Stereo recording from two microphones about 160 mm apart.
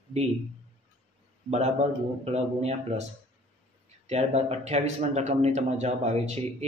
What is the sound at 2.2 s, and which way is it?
Speech, 40° right (ahead or behind).